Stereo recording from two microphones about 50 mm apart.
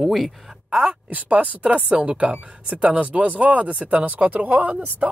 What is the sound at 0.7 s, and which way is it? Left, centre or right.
A man's voice, right.